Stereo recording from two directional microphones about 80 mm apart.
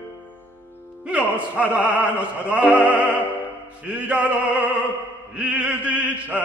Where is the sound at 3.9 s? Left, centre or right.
Centre.